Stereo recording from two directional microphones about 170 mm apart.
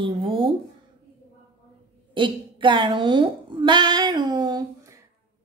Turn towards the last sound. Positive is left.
turn(degrees=-25)  # may be behind; listen again after turning